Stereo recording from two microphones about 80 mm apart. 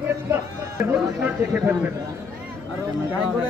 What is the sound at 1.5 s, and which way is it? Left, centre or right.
Speech, right.